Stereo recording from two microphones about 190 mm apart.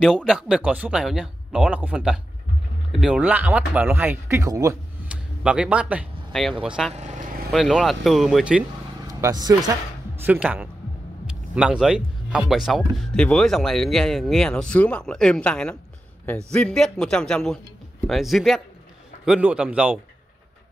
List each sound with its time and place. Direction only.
0.0 s speech: centre (ahead or behind); by 4.7 s 15° right (ahead or behind)
5.0 s speech: 5° right (ahead or behind)
9.0 s vehicle: 20° right (ahead or behind)
10.2 s speech: 10° right (ahead or behind)